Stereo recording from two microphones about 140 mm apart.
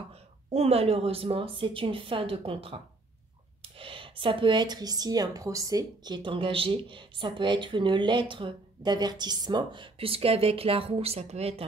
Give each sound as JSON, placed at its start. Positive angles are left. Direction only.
{"t": 0.5, "sound": "speech", "side_deg": -50}